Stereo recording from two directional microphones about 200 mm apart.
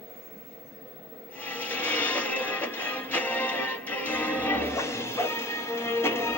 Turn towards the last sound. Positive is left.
turn(degrees=10)  # may be behind; listen again after turning